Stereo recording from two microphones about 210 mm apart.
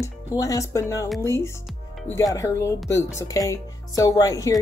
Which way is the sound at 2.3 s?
15° left (ahead or behind).